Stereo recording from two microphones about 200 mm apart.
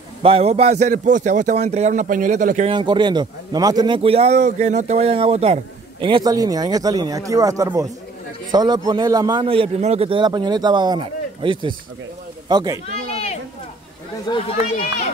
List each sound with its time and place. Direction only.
0.2 s a man's voice: 30° right (ahead or behind)
2.7 s a man's voice: 20° right (ahead or behind)
14.3 s speech: 20° left (ahead or behind)